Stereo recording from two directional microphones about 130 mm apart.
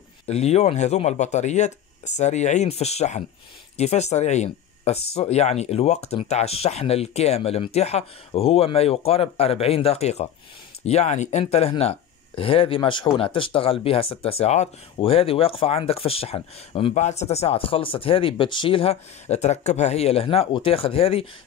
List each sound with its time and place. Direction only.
0.3 s speech: 55° left (ahead or behind)
16.9 s speech: 60° left (ahead or behind)